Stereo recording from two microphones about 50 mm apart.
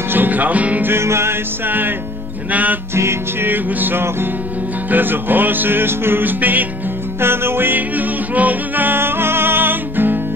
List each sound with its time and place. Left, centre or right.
0.1 s music: right
0.8 s music: right
2.5 s music: right
2.9 s music: right
3.4 s music: right
7.2 s music: right